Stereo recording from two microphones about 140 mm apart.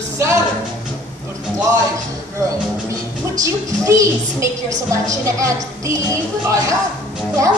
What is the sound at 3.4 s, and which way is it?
A woman's voice, 20° right (ahead or behind).